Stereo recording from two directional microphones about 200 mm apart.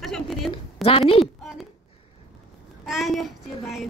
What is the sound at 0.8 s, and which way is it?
Speech, 30° left (ahead or behind).